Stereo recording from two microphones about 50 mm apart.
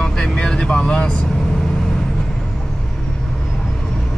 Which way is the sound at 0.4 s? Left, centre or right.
Left.